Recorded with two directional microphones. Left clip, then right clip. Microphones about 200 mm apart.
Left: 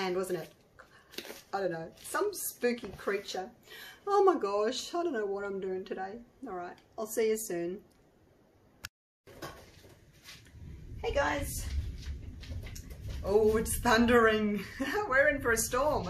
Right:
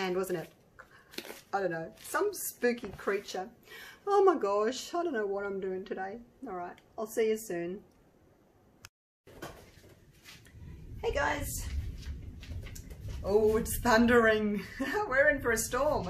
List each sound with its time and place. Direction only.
0.0 s speech: 15° right (ahead or behind)
11.0 s a woman's voice: 60° right (ahead or behind)
13.2 s speech: 15° right (ahead or behind)